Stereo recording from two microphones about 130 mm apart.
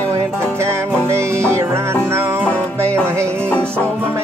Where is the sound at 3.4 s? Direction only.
10° left (ahead or behind).